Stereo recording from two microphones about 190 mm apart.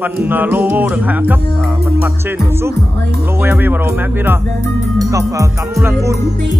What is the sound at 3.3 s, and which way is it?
Music, 10° right (ahead or behind).